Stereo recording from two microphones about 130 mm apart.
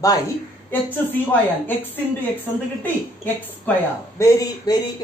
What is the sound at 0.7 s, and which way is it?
A woman's voice, 15° left (ahead or behind).